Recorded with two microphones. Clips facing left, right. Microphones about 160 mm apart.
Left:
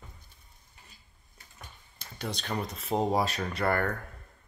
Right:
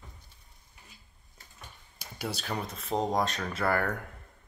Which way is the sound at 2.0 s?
10° right (ahead or behind).